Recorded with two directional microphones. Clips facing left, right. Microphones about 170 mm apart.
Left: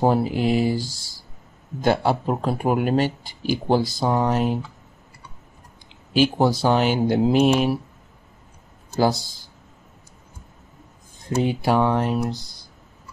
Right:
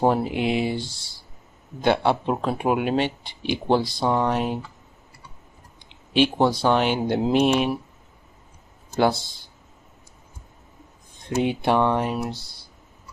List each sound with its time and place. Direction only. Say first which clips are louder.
0.0 s speech: left 1 dB; 5° left (ahead or behind)
0.7 s speech: left 2 dB; 25° right (ahead or behind)
1.9 s speech: even; 5° left (ahead or behind)
6.1 s speech: left 1 dB; 5° left (ahead or behind)
9.0 s speech: even; centre (ahead or behind)
11.2 s speech: left 1 dB; centre (ahead or behind)